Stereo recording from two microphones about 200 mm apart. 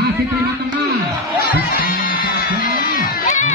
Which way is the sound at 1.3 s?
50° left (ahead or behind).